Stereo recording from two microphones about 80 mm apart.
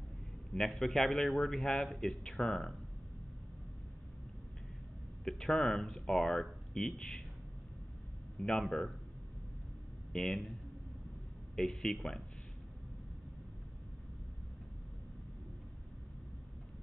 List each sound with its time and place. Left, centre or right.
0.6 s a man's voice: centre
5.2 s speech: centre
8.4 s speech: centre
10.1 s a man's voice: centre
11.5 s speech: centre